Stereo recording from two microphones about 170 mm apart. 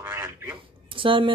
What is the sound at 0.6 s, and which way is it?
Speech, 30° right (ahead or behind).